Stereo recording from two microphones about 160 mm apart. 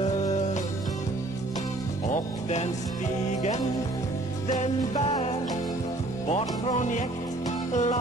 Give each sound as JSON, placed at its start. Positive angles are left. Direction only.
{"t": 2.0, "sound": "music", "side_deg": 45}
{"t": 6.2, "sound": "music", "side_deg": 45}